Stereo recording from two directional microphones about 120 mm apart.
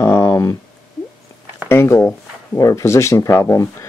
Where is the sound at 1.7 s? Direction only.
20° left (ahead or behind).